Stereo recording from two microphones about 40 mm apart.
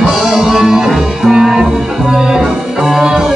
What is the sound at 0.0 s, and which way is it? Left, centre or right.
Music, centre.